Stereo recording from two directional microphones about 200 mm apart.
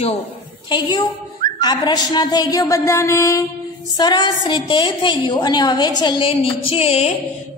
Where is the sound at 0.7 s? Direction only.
20° left (ahead or behind).